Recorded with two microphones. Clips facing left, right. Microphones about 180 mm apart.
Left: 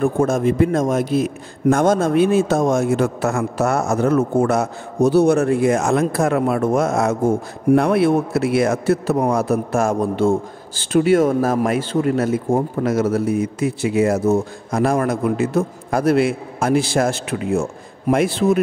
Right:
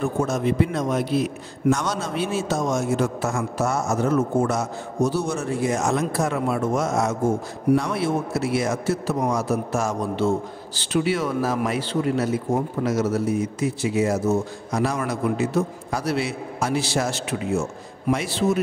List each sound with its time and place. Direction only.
0.0 s a man's voice: 50° left (ahead or behind)